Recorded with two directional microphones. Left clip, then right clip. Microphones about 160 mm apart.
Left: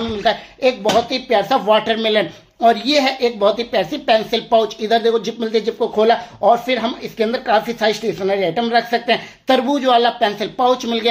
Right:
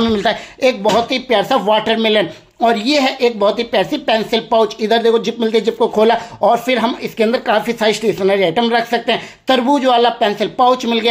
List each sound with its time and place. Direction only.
0.0 s speech: 50° right (ahead or behind); by 11.1 s 20° right (ahead or behind)